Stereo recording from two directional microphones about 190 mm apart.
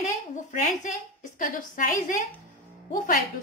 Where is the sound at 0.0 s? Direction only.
40° left (ahead or behind).